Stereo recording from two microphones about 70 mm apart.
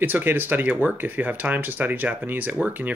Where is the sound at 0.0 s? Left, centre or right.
Right.